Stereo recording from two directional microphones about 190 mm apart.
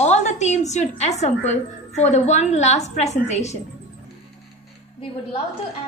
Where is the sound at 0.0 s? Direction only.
35° left (ahead or behind).